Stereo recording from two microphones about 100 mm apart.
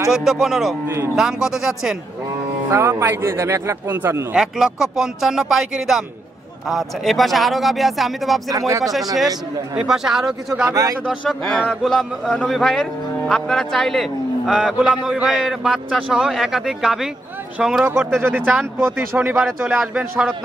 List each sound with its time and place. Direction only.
0.1 s a man's voice: centre (ahead or behind)
0.8 s speech: 25° right (ahead or behind)
1.1 s a man's voice: 5° right (ahead or behind)
2.7 s speech: 25° right (ahead or behind)
4.3 s a man's voice: 5° right (ahead or behind)
8.5 s speech: 35° right (ahead or behind)
9.8 s a man's voice: 5° right (ahead or behind)
10.7 s speech: 35° right (ahead or behind)
11.1 s a man's voice: 5° left (ahead or behind)
18.2 s speech: 15° right (ahead or behind)